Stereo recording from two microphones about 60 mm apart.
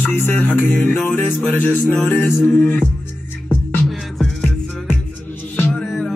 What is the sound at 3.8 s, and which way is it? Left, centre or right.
Music, centre.